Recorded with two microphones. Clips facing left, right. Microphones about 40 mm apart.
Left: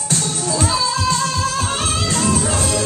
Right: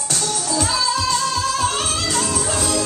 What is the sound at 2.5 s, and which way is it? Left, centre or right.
Music, left.